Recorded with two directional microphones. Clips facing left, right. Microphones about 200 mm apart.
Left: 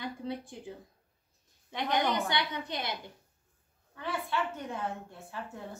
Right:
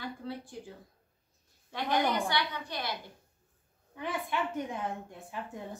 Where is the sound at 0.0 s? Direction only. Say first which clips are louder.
Left 2 dB; 20° left (ahead or behind).